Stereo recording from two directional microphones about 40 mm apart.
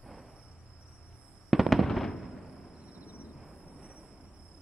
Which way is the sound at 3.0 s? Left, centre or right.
Right.